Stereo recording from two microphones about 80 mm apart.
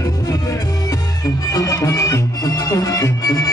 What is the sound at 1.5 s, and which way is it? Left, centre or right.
Music, left.